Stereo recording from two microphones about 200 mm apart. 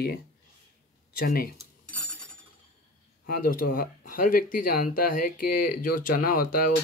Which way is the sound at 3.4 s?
45° left (ahead or behind).